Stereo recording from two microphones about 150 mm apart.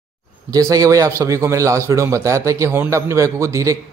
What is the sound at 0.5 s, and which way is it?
A man's voice, 25° right (ahead or behind).